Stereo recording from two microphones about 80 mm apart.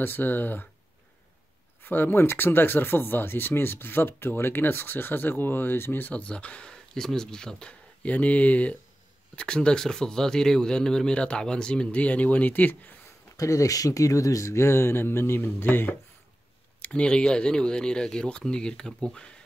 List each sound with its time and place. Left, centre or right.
0.0 s speech: left
1.8 s speech: left
13.4 s speech: left
16.8 s speech: centre